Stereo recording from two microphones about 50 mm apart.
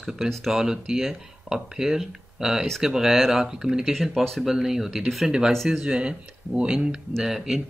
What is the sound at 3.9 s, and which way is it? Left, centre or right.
Speech, centre.